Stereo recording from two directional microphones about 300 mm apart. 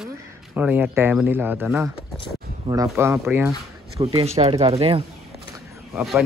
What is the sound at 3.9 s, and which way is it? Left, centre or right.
Speech, right.